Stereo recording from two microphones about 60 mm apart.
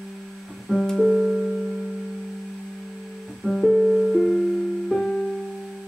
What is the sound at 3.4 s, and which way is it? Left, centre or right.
Music, centre.